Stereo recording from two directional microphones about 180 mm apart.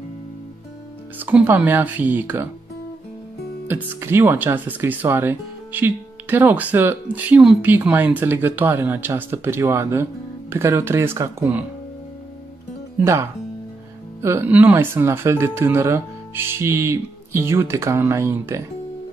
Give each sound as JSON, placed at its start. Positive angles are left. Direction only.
{"t": 1.2, "sound": "speech", "side_deg": -10}
{"t": 3.6, "sound": "speech", "side_deg": -10}
{"t": 13.0, "sound": "speech", "side_deg": -15}